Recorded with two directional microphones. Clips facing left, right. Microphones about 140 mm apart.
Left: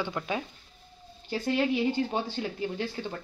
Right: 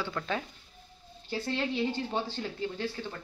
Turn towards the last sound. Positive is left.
turn(degrees=20)  # may be behind; listen again after turning